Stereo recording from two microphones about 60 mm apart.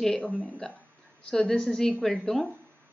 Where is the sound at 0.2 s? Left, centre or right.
Centre.